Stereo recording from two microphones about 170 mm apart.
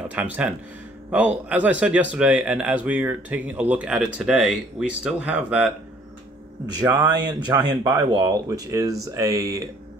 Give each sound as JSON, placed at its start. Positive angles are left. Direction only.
{"t": 0.1, "sound": "a man's voice", "side_deg": -10}
{"t": 6.7, "sound": "speech", "side_deg": -25}